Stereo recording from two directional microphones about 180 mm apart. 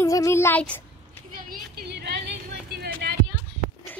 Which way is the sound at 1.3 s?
60° right (ahead or behind).